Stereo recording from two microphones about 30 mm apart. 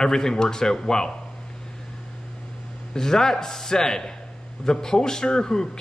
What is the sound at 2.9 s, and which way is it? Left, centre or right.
Speech, centre.